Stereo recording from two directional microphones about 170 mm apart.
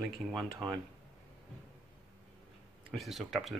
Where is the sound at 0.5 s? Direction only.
25° right (ahead or behind).